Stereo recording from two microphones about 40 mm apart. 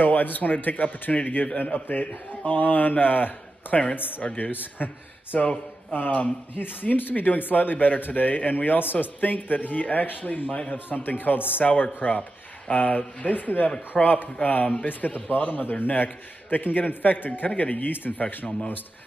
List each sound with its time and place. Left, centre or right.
0.0 s a man's voice: left
4.2 s a man's voice: left
4.5 s a man's voice: left
6.5 s a man's voice: left
11.6 s a man's voice: left